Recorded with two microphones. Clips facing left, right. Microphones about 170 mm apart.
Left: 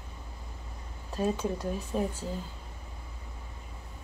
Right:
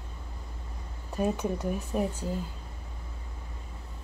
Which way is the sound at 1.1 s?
15° right (ahead or behind).